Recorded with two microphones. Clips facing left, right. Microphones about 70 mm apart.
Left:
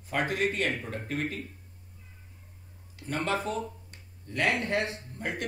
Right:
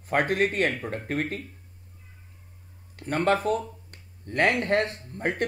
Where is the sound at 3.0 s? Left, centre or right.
Right.